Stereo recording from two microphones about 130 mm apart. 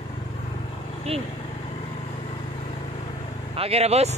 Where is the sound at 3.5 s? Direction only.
50° right (ahead or behind).